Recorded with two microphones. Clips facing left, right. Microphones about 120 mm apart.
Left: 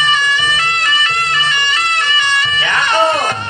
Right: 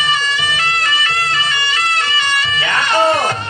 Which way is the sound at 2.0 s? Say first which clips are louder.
Left 2 dB; 20° left (ahead or behind).